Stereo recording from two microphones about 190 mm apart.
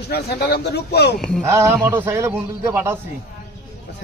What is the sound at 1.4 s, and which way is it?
Speech, 10° right (ahead or behind).